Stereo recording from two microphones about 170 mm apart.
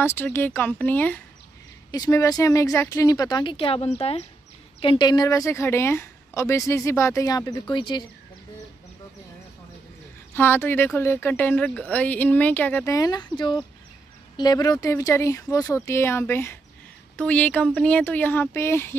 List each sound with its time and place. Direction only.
0.0 s speech: 15° left (ahead or behind)
1.9 s a woman's voice: 20° left (ahead or behind)
10.3 s a woman's voice: 15° left (ahead or behind)